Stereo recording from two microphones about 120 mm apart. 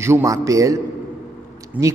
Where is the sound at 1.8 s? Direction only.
10° right (ahead or behind).